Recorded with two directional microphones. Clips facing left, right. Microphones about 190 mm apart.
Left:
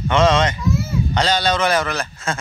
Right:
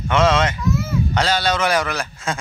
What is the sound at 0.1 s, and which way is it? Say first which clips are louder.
A child's voice: left 1 dB; 5° right (ahead or behind).